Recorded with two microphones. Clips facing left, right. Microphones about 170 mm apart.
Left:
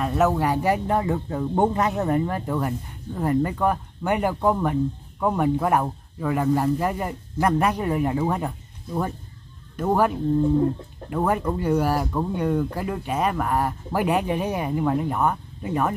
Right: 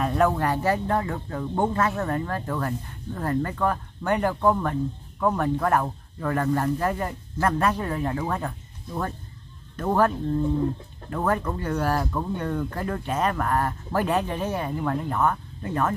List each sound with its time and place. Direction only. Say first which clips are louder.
0.0 s speech: left 1 dB; 5° left (ahead or behind)